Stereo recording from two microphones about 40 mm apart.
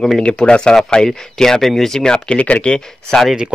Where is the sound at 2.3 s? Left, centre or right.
Left.